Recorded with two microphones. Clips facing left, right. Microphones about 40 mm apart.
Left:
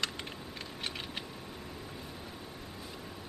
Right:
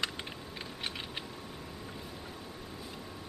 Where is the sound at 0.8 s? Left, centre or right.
Centre.